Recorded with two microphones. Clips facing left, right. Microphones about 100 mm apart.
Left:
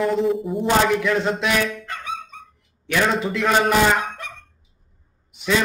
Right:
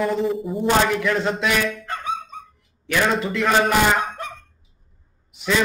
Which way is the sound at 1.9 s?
35° right (ahead or behind).